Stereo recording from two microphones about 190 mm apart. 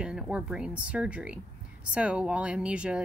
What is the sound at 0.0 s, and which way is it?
Speech, 5° right (ahead or behind).